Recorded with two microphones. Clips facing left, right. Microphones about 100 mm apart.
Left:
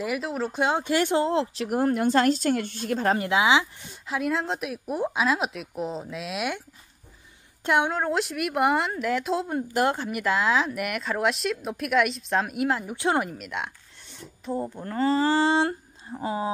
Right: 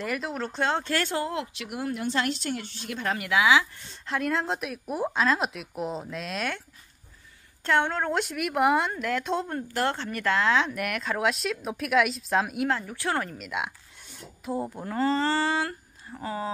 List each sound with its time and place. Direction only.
0.0 s speech: 5° left (ahead or behind); by 3.6 s 20° left (ahead or behind)
3.9 s speech: 5° left (ahead or behind)
7.6 s speech: 15° left (ahead or behind)
12.8 s speech: 20° left (ahead or behind)
13.3 s speech: centre (ahead or behind)
15.2 s speech: 20° left (ahead or behind)